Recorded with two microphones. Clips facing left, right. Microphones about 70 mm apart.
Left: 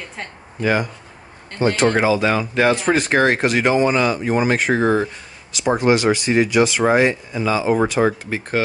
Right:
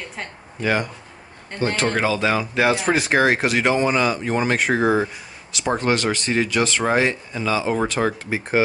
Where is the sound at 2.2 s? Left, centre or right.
Centre.